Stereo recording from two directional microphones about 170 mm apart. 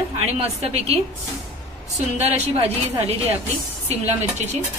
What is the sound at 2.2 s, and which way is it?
A woman's voice, 35° right (ahead or behind).